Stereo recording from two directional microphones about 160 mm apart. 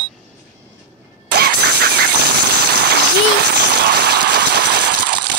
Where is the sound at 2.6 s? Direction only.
90° right.